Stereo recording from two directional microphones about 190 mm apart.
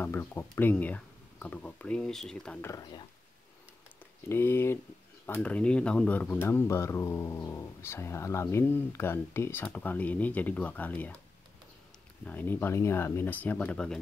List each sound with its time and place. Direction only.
0.0 s speech: 10° left (ahead or behind)
2.7 s speech: 20° left (ahead or behind)
4.3 s speech: 10° left (ahead or behind)
12.3 s speech: 10° left (ahead or behind)